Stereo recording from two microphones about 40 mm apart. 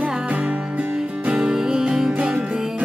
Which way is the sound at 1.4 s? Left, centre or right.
Centre.